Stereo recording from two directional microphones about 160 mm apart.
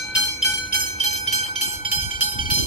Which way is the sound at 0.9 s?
40° left (ahead or behind).